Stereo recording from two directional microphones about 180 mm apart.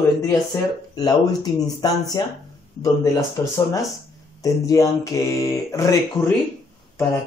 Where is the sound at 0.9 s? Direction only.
20° left (ahead or behind).